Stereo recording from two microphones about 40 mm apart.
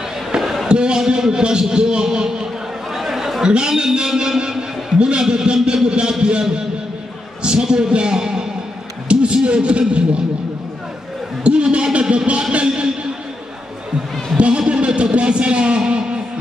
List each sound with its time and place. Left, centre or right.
0.4 s a sound: centre
0.7 s a man's voice: right
2.0 s chatter: centre
3.4 s a man's voice: centre
7.4 s a man's voice: right
11.4 s a sound: right
14.3 s a man's voice: right